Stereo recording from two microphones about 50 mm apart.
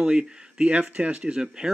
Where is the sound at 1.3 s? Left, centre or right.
Centre.